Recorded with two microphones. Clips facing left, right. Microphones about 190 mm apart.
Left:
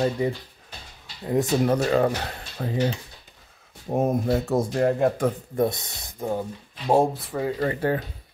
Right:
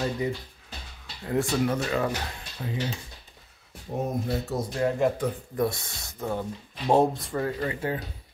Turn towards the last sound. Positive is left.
turn(degrees=50)  # may be behind; listen again after turning